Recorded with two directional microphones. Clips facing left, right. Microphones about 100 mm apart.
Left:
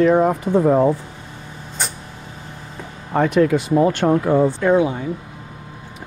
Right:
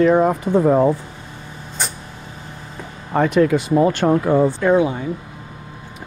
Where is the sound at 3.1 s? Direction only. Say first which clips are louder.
Even; 25° right (ahead or behind).